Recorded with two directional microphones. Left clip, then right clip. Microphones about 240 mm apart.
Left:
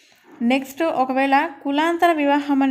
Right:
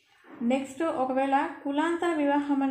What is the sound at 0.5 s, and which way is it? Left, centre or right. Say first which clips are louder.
A woman's voice: left 7 dB; left.